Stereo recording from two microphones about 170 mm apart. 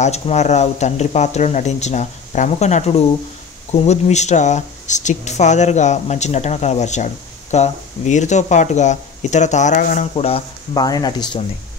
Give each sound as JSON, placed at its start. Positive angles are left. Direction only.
{"t": 0.0, "sound": "speech", "side_deg": 40}
{"t": 10.1, "sound": "speech", "side_deg": 35}